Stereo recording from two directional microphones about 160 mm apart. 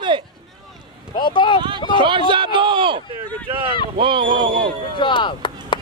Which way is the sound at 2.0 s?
30° right (ahead or behind).